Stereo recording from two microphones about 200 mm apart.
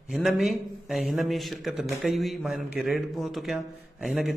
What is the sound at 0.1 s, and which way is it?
Speech, centre (ahead or behind).